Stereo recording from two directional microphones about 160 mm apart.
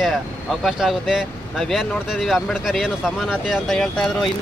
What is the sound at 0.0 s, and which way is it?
Speech, centre (ahead or behind).